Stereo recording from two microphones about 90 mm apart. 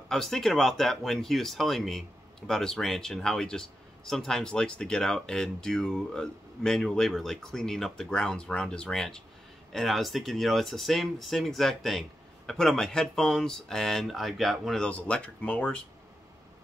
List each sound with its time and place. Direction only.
0.1 s speech: 5° left (ahead or behind)
14.9 s speech: 15° left (ahead or behind)